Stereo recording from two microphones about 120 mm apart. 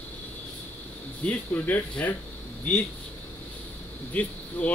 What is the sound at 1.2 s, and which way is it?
Speech, 15° left (ahead or behind).